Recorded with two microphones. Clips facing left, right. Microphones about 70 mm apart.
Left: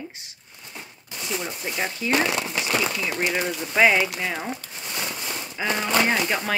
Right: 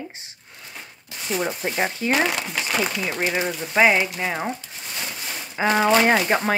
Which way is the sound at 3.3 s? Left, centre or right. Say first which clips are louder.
Right 2 dB; centre.